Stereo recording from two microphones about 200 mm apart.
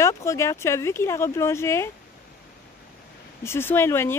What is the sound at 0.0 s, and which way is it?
Speech, 15° left (ahead or behind).